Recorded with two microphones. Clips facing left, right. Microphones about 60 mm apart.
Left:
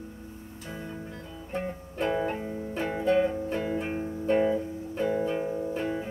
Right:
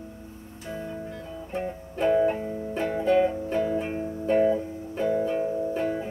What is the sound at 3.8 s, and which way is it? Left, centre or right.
Music, centre.